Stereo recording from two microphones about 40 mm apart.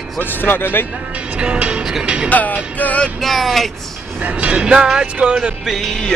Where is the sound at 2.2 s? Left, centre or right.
Left.